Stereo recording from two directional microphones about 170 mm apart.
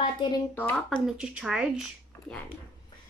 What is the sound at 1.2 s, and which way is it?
Speech, 5° right (ahead or behind).